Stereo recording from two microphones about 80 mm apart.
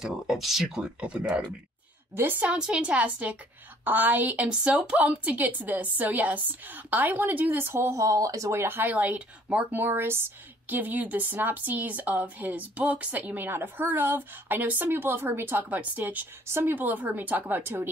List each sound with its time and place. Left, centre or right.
0.0 s speech: centre
2.4 s a woman's voice: centre
4.5 s a woman's voice: centre; by 17.8 s right